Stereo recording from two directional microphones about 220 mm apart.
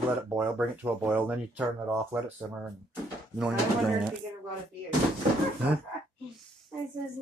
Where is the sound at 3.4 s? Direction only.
Centre (ahead or behind).